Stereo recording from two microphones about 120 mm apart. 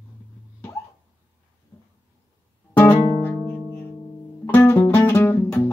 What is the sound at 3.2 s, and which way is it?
Music, 15° left (ahead or behind).